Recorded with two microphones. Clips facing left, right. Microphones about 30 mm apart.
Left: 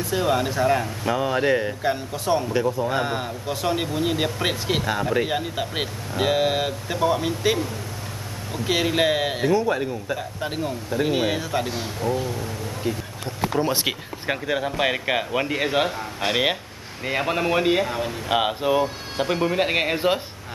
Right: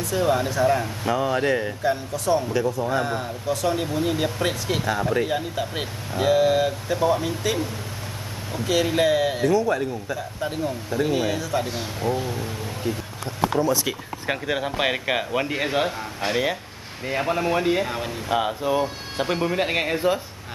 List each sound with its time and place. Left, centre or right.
0.0 s speech: centre
1.8 s speech: left
8.6 s speech: left
11.6 s speech: centre
12.9 s speech: centre
13.6 s speech: left
14.3 s speech: centre
16.3 s speech: left
17.2 s speech: centre
17.8 s speech: centre
18.3 s speech: left
18.7 s speech: centre